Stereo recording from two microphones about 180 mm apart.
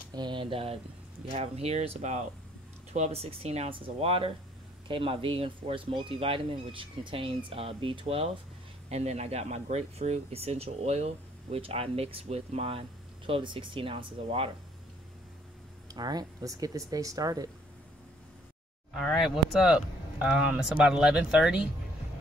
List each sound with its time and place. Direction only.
0.1 s speech: 25° right (ahead or behind)
15.9 s speech: 20° right (ahead or behind)
18.9 s speech: centre (ahead or behind)